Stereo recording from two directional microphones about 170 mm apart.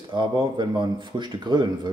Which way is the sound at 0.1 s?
25° right (ahead or behind).